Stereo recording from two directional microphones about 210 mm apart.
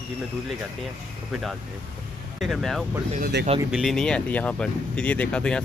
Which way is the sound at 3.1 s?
45° right (ahead or behind).